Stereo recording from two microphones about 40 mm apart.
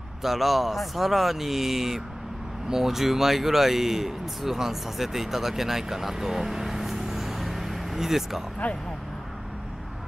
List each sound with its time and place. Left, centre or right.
0.2 s speech: centre
8.6 s speech: left